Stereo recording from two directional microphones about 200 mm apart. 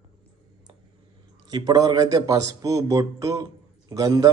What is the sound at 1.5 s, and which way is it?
A man's voice, 20° right (ahead or behind).